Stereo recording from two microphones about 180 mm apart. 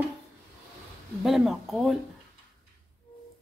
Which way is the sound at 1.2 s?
Centre (ahead or behind).